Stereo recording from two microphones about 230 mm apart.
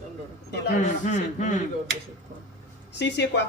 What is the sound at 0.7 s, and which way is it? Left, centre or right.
Speech, left.